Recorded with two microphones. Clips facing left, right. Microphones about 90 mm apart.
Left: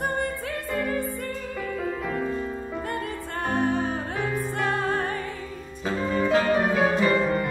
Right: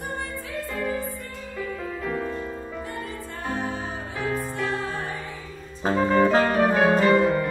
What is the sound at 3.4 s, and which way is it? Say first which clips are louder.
Music: left 5 dB; 55° left (ahead or behind).